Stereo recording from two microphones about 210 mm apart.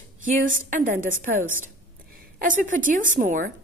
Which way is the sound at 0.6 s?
40° right (ahead or behind).